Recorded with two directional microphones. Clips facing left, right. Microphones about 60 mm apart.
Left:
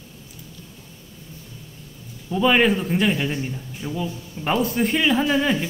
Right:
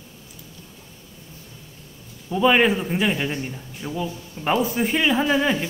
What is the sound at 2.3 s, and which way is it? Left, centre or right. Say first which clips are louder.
A man's voice: even; centre.